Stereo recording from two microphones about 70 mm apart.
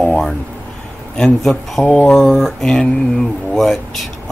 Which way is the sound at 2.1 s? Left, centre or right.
Centre.